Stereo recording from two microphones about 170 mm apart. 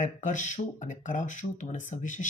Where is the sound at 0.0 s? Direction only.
45° left (ahead or behind).